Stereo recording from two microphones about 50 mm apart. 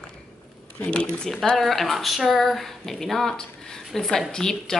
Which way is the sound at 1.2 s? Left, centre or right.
Centre.